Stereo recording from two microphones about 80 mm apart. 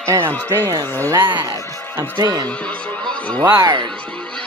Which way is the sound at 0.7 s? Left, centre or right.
Right.